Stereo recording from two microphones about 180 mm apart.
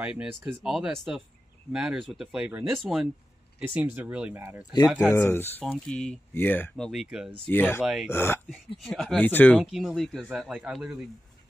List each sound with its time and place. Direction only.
0.0 s speech: 5° right (ahead or behind)
4.7 s speech: 20° left (ahead or behind)
6.9 s speech: centre (ahead or behind)
7.4 s speech: 10° left (ahead or behind)
7.8 s speech: centre (ahead or behind)
8.1 s speech: 15° left (ahead or behind)
8.7 s speech: centre (ahead or behind)
9.6 s speech: centre (ahead or behind)